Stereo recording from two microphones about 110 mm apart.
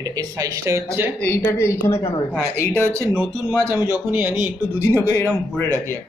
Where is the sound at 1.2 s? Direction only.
20° left (ahead or behind).